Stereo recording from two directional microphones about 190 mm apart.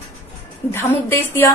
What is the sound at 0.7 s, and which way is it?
Speech, 10° left (ahead or behind).